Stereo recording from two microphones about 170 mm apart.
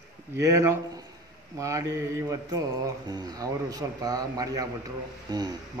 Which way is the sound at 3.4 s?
20° right (ahead or behind).